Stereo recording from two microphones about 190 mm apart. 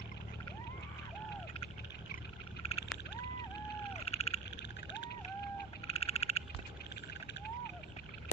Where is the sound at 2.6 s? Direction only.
30° left (ahead or behind).